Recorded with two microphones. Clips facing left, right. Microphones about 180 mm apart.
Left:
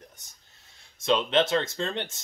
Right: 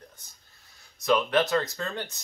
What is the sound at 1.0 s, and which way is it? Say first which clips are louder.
Speech: even; 25° left (ahead or behind).